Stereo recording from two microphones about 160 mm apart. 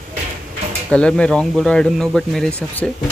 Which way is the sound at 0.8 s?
5° left (ahead or behind).